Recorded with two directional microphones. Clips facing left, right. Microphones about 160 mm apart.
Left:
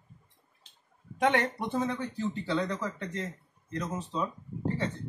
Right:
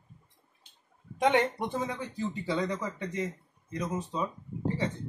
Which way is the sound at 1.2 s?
15° right (ahead or behind).